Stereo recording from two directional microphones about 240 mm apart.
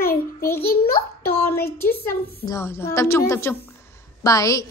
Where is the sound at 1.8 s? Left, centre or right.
Centre.